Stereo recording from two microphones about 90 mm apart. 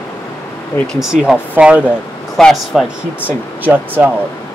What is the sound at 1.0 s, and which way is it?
Speech, 5° right (ahead or behind).